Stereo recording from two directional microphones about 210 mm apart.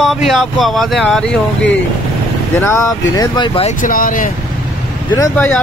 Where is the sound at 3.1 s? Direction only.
20° left (ahead or behind).